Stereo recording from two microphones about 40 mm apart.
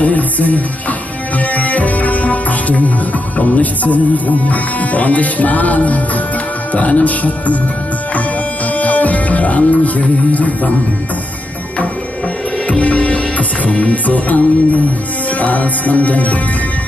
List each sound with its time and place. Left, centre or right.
0.0 s music: left
3.3 s speech: left
8.7 s music: left
12.6 s music: left
15.3 s speech: left